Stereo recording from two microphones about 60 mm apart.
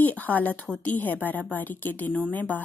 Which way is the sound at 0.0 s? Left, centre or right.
Left.